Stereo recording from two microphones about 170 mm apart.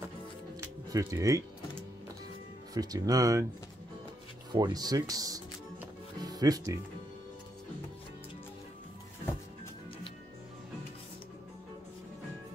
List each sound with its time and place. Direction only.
0.9 s speech: 20° right (ahead or behind)
2.7 s speech: 20° right (ahead or behind)
4.5 s speech: 25° right (ahead or behind)